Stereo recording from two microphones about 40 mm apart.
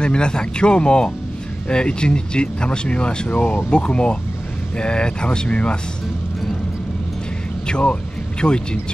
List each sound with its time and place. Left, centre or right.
0.0 s speech: left
7.6 s speech: left